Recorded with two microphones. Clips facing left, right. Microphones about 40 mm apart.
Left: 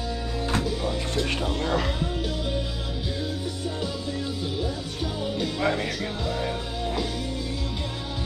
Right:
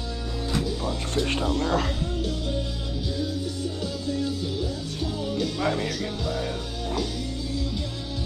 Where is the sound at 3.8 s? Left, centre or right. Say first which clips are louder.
Right 2 dB; centre.